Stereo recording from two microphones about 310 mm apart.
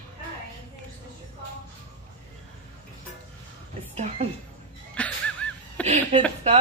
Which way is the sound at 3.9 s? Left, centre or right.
Centre.